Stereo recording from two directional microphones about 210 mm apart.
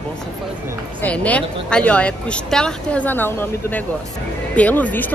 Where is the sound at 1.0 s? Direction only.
5° left (ahead or behind).